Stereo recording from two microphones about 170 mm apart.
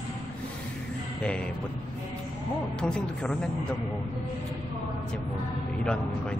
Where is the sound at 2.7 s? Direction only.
5° left (ahead or behind).